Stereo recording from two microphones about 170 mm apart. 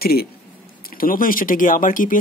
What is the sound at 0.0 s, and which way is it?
Speech, 65° left (ahead or behind).